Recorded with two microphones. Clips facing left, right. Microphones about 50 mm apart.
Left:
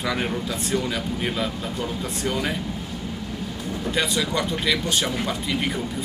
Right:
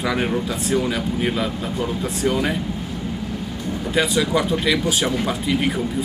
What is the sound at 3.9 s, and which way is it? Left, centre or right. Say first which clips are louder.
Speech: right 5 dB; centre.